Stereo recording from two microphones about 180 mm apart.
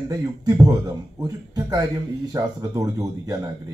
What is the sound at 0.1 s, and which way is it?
Speech, 20° right (ahead or behind).